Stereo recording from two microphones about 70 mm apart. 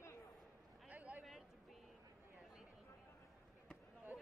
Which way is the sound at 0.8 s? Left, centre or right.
Right.